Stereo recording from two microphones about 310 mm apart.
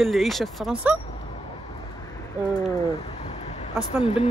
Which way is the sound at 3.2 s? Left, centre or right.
Left.